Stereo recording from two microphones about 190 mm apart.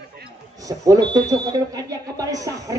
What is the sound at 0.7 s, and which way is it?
Speech, 20° right (ahead or behind).